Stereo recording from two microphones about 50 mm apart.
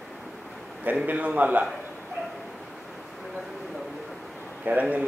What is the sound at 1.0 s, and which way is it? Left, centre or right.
Speech, right.